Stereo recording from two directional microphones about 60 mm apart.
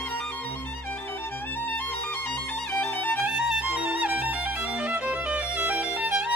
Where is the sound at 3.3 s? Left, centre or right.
Centre.